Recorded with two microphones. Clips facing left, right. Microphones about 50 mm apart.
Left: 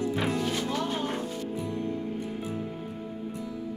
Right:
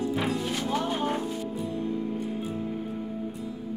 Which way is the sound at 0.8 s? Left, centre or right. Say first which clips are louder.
Right 2 dB; centre.